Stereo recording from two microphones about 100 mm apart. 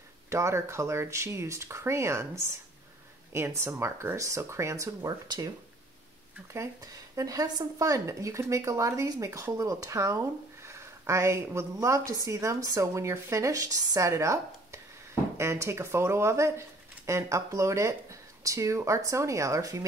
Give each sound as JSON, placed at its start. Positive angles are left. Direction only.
{"t": 0.3, "sound": "speech", "side_deg": -30}
{"t": 6.5, "sound": "speech", "side_deg": -30}